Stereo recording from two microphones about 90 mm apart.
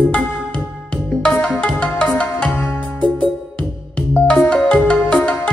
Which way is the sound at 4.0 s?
15° left (ahead or behind).